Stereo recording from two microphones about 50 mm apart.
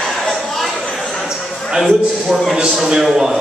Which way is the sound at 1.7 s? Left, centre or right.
Centre.